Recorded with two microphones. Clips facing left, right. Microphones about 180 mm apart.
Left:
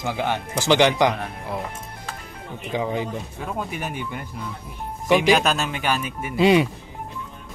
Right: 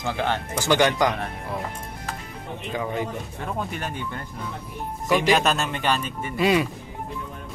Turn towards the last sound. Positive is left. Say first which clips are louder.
# left 4 dB
turn(degrees=20)  # may be behind; listen again after turning